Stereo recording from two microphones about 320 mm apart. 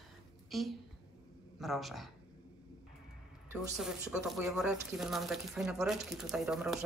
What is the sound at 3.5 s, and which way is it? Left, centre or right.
Speech, centre.